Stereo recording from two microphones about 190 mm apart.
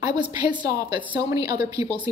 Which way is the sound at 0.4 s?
25° right (ahead or behind).